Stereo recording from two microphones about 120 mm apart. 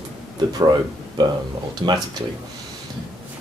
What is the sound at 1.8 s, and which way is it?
Speech, 40° right (ahead or behind).